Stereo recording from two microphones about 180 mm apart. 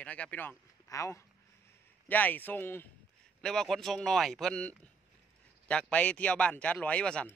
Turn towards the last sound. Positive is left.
turn(degrees=5)  # may be behind; listen again after turning